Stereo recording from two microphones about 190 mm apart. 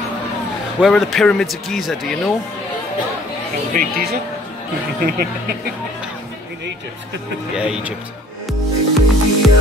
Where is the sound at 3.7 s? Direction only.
45° right (ahead or behind).